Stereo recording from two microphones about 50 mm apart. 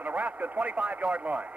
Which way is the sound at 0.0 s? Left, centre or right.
Right.